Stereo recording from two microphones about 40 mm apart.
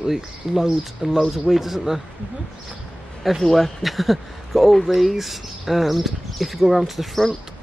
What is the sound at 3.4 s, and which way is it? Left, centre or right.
Speech, centre.